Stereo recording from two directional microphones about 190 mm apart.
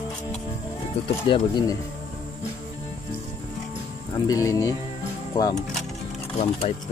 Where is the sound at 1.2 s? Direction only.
25° left (ahead or behind).